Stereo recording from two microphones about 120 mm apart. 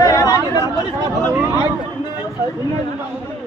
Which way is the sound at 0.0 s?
30° left (ahead or behind).